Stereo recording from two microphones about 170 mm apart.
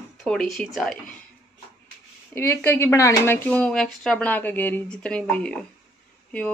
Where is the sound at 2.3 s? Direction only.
15° left (ahead or behind).